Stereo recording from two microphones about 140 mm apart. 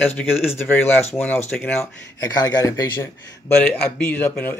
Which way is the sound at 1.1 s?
10° left (ahead or behind).